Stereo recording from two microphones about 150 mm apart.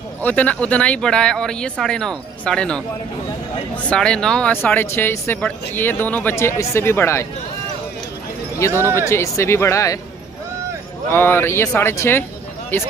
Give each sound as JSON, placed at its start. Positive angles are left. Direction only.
{"t": 0.2, "sound": "speech", "side_deg": 10}
{"t": 8.6, "sound": "speech", "side_deg": 20}
{"t": 11.1, "sound": "speech", "side_deg": 15}